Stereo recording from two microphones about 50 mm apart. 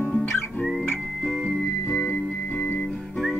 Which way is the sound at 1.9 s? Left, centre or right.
Centre.